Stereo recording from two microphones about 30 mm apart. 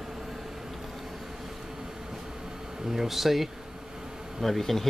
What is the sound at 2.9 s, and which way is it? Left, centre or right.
Speech, centre.